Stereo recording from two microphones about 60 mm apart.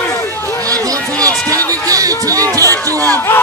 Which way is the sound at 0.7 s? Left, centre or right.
Right.